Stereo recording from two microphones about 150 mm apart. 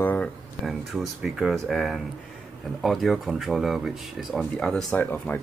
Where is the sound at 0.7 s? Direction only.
Centre (ahead or behind).